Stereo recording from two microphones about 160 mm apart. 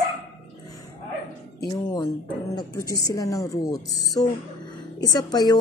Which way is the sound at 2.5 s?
25° left (ahead or behind).